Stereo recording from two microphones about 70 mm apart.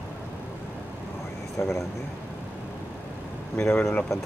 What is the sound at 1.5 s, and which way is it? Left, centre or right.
Speech, left.